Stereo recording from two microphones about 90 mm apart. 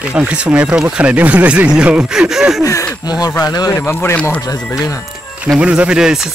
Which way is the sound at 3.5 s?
35° left (ahead or behind).